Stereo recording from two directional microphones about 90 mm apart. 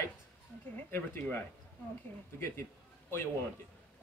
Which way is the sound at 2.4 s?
30° left (ahead or behind).